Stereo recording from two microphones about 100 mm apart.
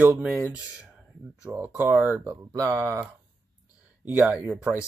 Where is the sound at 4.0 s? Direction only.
15° right (ahead or behind).